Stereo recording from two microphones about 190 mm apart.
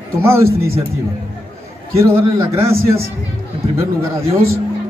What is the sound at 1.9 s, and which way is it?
Speech, 15° right (ahead or behind).